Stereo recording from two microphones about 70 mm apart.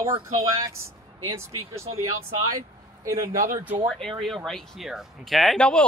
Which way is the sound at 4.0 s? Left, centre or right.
Centre.